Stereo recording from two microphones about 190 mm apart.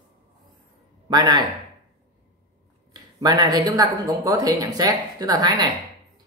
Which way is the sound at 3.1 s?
20° right (ahead or behind).